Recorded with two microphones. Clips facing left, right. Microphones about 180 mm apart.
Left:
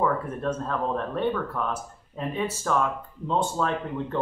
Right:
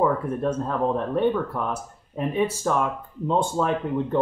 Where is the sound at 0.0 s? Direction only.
15° right (ahead or behind).